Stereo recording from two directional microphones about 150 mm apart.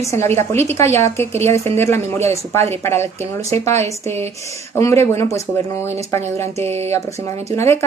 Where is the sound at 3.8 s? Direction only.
45° right (ahead or behind).